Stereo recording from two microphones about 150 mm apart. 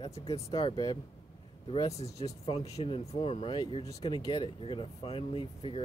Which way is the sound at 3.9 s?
25° left (ahead or behind).